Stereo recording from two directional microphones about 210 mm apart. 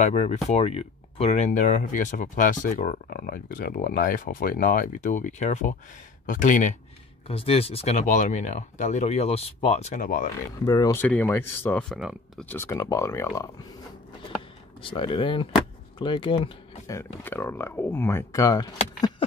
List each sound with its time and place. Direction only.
0.0 s speech: 30° left (ahead or behind)
10.6 s speech: 20° left (ahead or behind); by 12.4 s centre (ahead or behind)
12.4 s speech: 10° left (ahead or behind)
14.8 s speech: 25° left (ahead or behind)
16.9 s speech: 10° left (ahead or behind)
18.9 s a sound: 20° left (ahead or behind)